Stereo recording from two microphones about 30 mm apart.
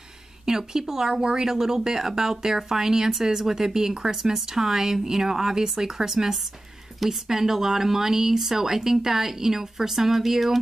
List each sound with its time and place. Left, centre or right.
0.5 s speech: centre